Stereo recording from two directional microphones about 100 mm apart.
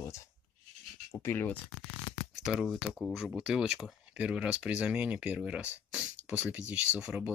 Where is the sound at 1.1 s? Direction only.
25° left (ahead or behind).